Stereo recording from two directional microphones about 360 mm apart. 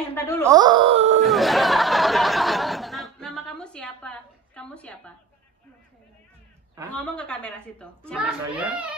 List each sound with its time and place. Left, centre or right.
0.1 s speech: centre
0.4 s speech: centre
1.2 s a sound: centre
6.9 s a child's voice: centre